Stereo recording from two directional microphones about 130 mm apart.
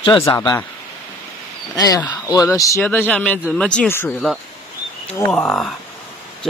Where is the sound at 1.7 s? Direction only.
25° left (ahead or behind).